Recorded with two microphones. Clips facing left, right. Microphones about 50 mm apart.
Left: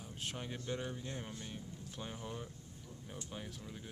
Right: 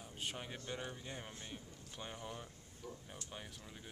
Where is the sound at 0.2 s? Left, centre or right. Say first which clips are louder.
Left 1 dB; centre.